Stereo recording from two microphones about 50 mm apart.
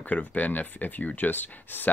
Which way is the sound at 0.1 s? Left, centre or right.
Left.